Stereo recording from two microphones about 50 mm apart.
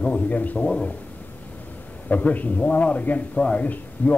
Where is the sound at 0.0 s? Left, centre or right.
Left.